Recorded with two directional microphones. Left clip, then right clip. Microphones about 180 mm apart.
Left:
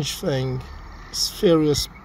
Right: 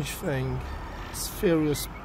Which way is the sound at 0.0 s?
10° left (ahead or behind).